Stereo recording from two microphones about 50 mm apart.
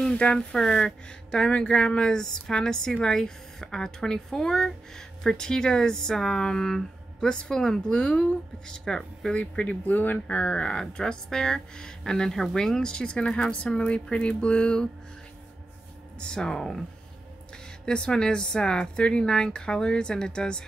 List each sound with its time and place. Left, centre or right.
0.0 s speech: centre
9.3 s speech: left
10.2 s speech: left
13.7 s music: left
16.2 s speech: centre
17.8 s speech: centre